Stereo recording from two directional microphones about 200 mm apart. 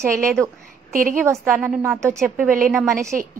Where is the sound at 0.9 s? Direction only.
45° right (ahead or behind).